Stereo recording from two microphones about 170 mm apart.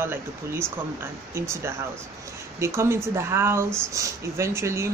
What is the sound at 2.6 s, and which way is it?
Speech, 15° right (ahead or behind).